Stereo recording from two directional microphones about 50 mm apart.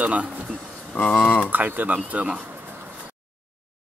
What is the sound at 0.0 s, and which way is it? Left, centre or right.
Speech, right.